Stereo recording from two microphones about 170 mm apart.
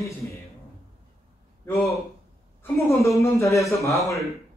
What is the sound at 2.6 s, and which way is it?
A woman's voice, 15° left (ahead or behind).